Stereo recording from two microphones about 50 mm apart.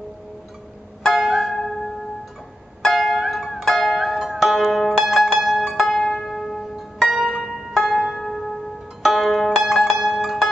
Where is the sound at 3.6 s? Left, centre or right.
Centre.